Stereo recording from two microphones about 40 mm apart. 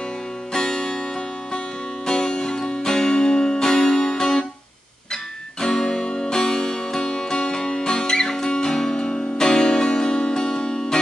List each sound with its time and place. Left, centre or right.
0.5 s music: centre
2.0 s music: centre